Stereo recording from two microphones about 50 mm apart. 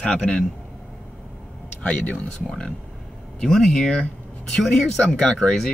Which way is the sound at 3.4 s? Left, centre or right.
Centre.